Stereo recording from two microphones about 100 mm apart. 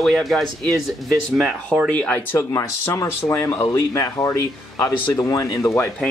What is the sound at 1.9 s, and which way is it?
Speech, 15° left (ahead or behind).